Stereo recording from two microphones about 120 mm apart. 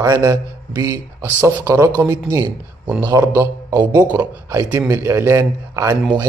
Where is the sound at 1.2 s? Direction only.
20° right (ahead or behind).